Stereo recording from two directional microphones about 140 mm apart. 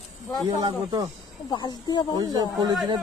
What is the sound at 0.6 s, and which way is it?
Speech, 30° right (ahead or behind).